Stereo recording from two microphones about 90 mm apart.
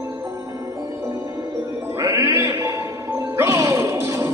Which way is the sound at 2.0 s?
35° right (ahead or behind).